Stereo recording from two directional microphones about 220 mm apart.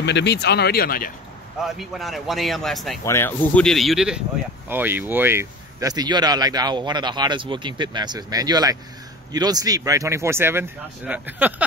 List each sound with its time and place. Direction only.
0.0 s speech: 50° left (ahead or behind)
1.6 s a man's voice: centre (ahead or behind)
3.0 s a man's voice: 10° left (ahead or behind); by 11.6 s 10° right (ahead or behind)